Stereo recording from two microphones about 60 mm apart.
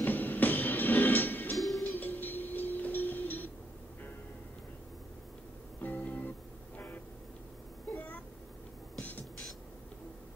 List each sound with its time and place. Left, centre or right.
0.0 s music: left
1.6 s music: centre
2.0 s vehicle: left
5.8 s music: left
7.9 s cat: left